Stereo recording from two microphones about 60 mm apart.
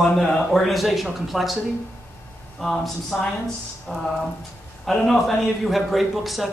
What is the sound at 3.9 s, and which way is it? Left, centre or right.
Speech, centre.